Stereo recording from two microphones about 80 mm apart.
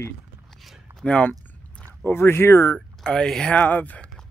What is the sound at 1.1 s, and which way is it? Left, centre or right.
Speech, centre.